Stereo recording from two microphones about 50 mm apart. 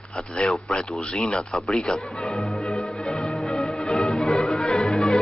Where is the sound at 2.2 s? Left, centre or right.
Centre.